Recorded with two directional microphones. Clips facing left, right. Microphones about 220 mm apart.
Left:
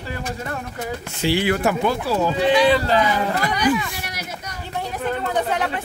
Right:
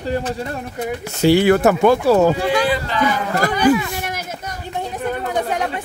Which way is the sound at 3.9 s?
50° right (ahead or behind).